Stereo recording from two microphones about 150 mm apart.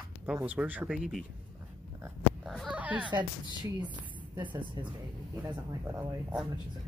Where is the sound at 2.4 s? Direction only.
Centre (ahead or behind).